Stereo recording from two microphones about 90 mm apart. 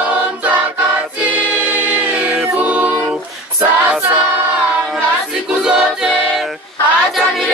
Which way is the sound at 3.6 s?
15° right (ahead or behind).